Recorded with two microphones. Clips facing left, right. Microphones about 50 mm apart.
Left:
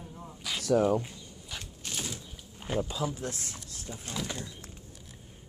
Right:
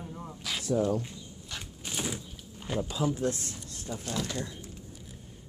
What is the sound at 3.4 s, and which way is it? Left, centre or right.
Speech, right.